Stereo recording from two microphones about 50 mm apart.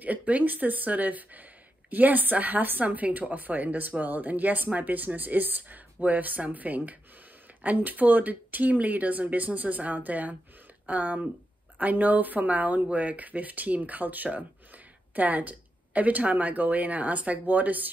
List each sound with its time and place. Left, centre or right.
0.0 s speech: right